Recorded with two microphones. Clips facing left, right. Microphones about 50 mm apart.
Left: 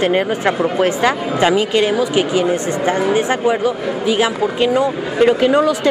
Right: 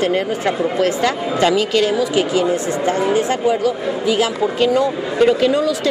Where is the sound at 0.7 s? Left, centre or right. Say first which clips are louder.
Left 2 dB; left.